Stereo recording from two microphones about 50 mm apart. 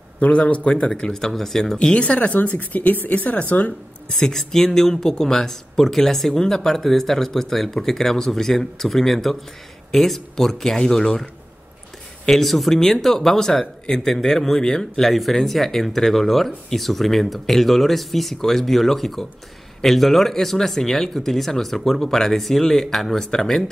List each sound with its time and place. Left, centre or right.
0.2 s speech: left; by 1.8 s centre
1.8 s speech: left
4.1 s speech: centre
12.3 s speech: centre